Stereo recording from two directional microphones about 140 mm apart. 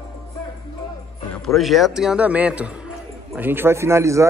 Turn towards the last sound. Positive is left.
turn(degrees=-20)  # may be behind; listen again after turning